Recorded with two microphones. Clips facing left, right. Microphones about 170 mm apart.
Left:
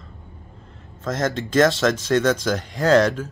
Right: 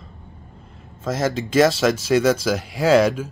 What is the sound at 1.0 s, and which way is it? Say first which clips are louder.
Speech: right 1 dB; 5° right (ahead or behind).